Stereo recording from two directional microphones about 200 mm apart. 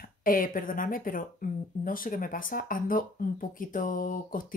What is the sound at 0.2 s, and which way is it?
Speech, 45° left (ahead or behind).